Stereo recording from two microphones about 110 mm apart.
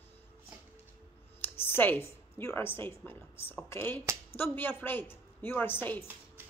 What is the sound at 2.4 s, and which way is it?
A woman's voice, 20° left (ahead or behind).